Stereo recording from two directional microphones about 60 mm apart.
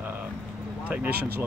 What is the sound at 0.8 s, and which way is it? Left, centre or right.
Speech, right.